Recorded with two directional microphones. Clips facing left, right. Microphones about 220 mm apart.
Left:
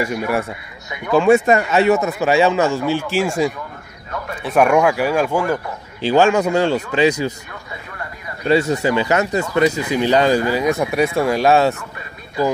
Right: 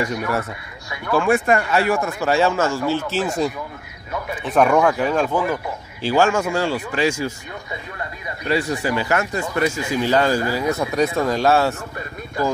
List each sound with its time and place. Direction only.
0.3 s speech: 15° left (ahead or behind)
8.5 s speech: 25° left (ahead or behind)